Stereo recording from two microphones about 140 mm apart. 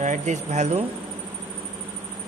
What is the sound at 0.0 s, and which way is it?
Speech, 60° right (ahead or behind).